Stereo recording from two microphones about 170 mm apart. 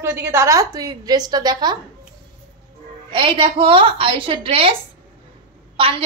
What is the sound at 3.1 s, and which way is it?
A woman's voice, 30° right (ahead or behind).